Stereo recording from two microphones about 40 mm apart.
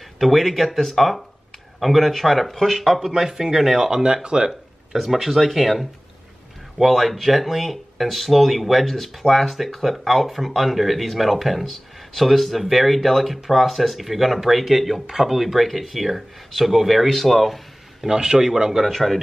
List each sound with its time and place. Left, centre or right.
0.2 s speech: centre
3.9 s speech: right
4.5 s speech: centre
18.0 s speech: centre
18.9 s a man's voice: centre